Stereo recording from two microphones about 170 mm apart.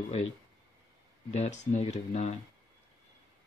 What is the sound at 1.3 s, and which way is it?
Speech, 40° left (ahead or behind).